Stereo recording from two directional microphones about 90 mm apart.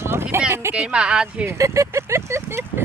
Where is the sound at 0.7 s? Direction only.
10° right (ahead or behind).